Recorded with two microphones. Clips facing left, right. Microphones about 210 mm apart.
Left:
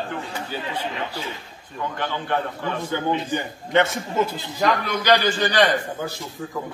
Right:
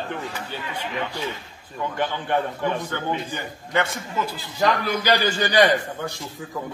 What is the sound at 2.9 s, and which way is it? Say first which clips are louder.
A man's voice: left 4 dB; 20° left (ahead or behind).